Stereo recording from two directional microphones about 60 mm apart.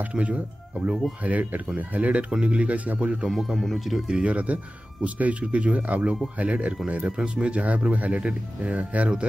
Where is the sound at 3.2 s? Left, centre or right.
Centre.